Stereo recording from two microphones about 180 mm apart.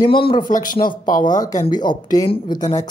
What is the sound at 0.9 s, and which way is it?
Speech, 25° left (ahead or behind).